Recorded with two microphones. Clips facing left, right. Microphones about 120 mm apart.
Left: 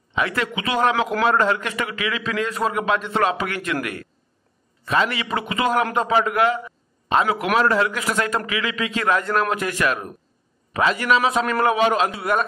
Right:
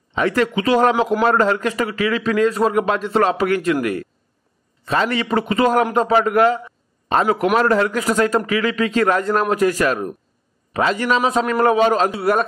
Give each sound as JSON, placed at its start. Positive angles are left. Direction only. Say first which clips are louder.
{"t": 0.1, "sound": "a man's voice", "louder": "right 6 dB", "side_deg": -40}